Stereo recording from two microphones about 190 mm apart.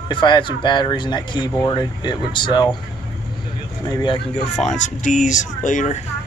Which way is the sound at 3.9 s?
20° left (ahead or behind).